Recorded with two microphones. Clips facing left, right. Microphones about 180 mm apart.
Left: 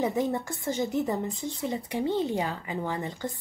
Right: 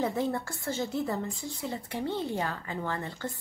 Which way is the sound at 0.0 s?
15° left (ahead or behind).